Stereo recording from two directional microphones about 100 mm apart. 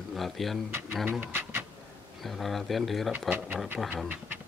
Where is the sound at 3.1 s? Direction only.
15° right (ahead or behind).